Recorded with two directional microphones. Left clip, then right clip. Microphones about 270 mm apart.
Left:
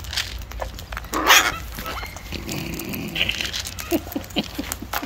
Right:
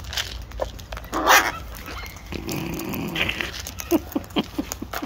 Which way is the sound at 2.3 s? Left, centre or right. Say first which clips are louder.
Right 2 dB; centre.